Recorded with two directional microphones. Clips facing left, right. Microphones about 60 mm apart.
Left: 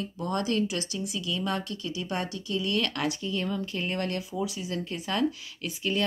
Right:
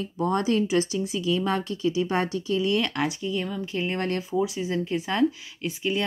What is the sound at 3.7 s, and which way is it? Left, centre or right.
Speech, right.